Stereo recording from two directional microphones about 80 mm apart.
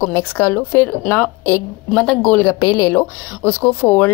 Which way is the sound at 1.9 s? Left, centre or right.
Centre.